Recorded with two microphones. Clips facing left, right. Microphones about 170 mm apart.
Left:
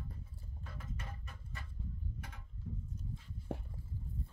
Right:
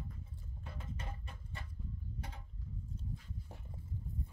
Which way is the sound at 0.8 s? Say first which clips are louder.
Right 1 dB; 30° right (ahead or behind).